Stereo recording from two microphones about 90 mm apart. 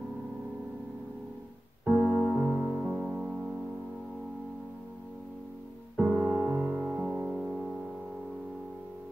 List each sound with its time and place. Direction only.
1.9 s music: 15° right (ahead or behind)
5.9 s music: 15° right (ahead or behind)